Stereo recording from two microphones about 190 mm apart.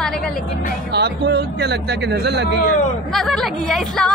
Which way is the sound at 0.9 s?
60° right (ahead or behind).